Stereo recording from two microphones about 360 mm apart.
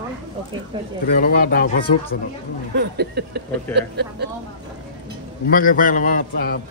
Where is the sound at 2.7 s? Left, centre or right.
Right.